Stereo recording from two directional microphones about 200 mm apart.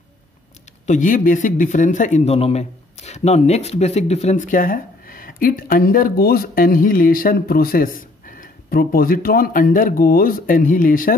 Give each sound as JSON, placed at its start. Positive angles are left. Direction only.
{"t": 0.8, "sound": "speech", "side_deg": 40}